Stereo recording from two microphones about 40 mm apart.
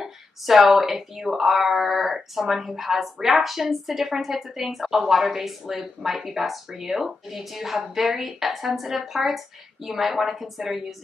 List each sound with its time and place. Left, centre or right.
0.0 s speech: centre